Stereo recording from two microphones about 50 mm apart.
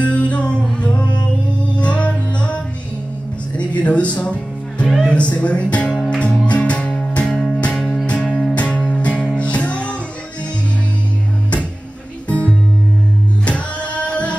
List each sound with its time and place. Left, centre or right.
0.0 s music: left
5.0 s speech: left
6.0 s music: left
8.5 s music: left
12.3 s music: left